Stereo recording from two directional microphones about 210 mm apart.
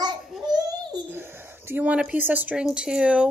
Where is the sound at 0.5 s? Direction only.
20° right (ahead or behind).